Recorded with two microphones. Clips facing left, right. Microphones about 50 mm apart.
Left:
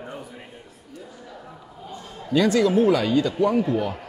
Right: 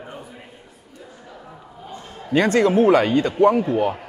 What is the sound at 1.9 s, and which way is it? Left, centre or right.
A man's voice, right.